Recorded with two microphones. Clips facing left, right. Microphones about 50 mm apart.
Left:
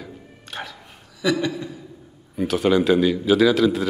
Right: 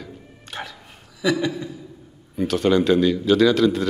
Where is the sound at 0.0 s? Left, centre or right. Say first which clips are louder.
Even; centre.